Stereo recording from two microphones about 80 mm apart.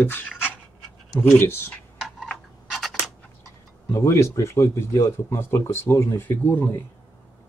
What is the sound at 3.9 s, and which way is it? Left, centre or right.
Speech, left.